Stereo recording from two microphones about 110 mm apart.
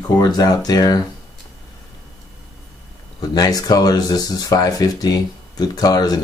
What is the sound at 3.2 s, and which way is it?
Speech, 35° left (ahead or behind).